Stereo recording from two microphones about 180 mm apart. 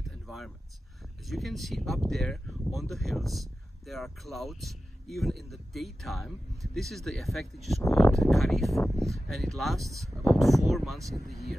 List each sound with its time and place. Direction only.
1.3 s speech: centre (ahead or behind)
7.8 s speech: 15° left (ahead or behind)
8.1 s speech: centre (ahead or behind)